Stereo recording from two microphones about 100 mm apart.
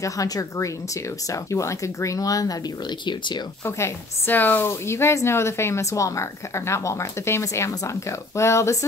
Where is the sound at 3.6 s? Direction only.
25° left (ahead or behind).